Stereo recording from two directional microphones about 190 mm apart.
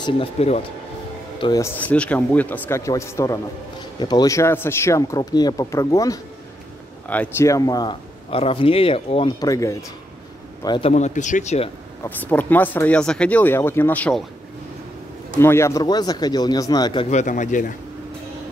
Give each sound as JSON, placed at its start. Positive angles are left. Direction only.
{"t": 0.0, "sound": "speech", "side_deg": 30}
{"t": 1.4, "sound": "speech", "side_deg": 20}
{"t": 1.8, "sound": "speech", "side_deg": 10}
{"t": 9.4, "sound": "a man's voice", "side_deg": 15}
{"t": 10.9, "sound": "speech", "side_deg": 40}
{"t": 12.0, "sound": "speech", "side_deg": 10}
{"t": 15.3, "sound": "speech", "side_deg": 15}
{"t": 17.1, "sound": "speech", "side_deg": 40}